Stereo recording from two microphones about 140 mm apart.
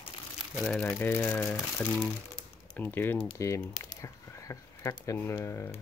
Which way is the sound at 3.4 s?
25° left (ahead or behind).